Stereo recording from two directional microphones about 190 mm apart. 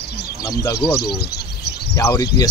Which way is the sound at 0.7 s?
55° left (ahead or behind).